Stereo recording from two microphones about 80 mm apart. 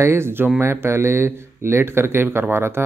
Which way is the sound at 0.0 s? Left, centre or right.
Right.